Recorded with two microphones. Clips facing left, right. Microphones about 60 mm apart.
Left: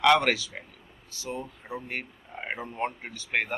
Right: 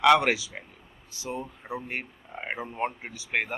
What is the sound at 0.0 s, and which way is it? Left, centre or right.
Speech, centre.